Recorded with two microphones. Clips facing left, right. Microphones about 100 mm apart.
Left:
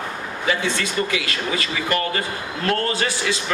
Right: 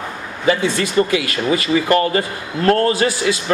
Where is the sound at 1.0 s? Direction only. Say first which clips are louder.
Right 7 dB; 30° right (ahead or behind).